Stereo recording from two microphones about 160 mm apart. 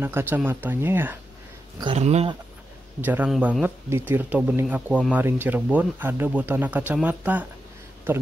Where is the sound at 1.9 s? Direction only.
40° right (ahead or behind).